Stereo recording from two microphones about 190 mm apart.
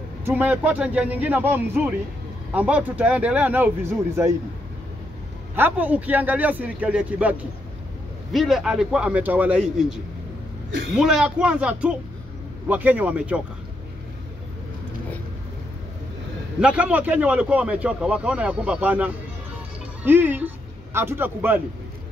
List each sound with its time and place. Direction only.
0.2 s speech: 10° right (ahead or behind)
5.6 s a man's voice: 10° right (ahead or behind)
11.0 s a man's voice: 5° right (ahead or behind)
16.6 s speech: 5° right (ahead or behind)